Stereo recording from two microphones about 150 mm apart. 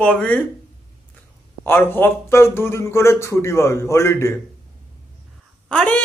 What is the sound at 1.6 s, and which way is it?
Speech, 15° left (ahead or behind).